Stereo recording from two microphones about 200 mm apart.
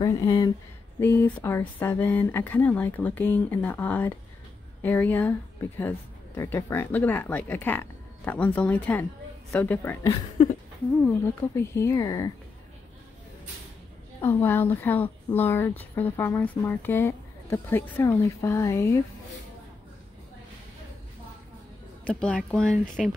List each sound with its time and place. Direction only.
0.0 s a woman's voice: 15° left (ahead or behind)
14.2 s a woman's voice: 10° left (ahead or behind)
22.0 s speech: 5° left (ahead or behind)